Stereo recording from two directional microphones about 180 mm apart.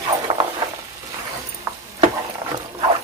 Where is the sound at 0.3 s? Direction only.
25° right (ahead or behind).